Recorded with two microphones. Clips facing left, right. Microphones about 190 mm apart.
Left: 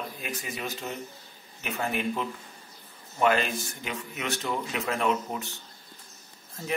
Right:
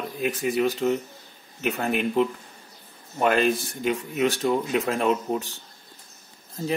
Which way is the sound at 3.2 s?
50° right (ahead or behind).